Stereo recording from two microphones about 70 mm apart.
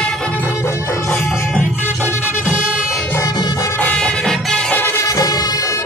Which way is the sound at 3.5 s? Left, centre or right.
Left.